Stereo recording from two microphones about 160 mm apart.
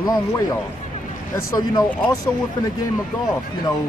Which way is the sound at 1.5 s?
25° left (ahead or behind).